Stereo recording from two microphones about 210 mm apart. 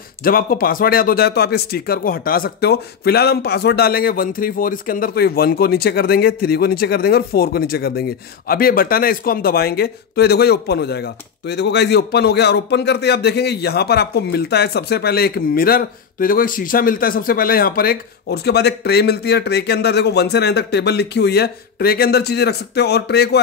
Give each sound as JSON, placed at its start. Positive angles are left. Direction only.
{"t": 0.2, "sound": "speech", "side_deg": 45}